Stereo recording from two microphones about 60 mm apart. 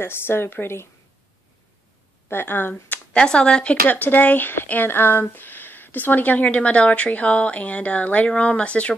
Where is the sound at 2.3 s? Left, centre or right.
Left.